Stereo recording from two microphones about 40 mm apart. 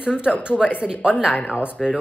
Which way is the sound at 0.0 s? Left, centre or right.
Right.